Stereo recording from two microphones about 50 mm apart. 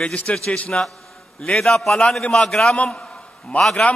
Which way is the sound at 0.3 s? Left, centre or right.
Left.